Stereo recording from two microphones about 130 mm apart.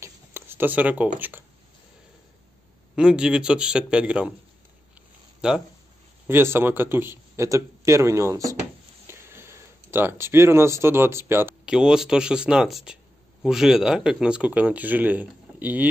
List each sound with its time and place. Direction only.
0.0 s a sound: 15° right (ahead or behind)
3.0 s speech: 5° right (ahead or behind)
5.4 s speech: 5° right (ahead or behind)
6.2 s speech: 15° right (ahead or behind)
11.6 s speech: 5° right (ahead or behind)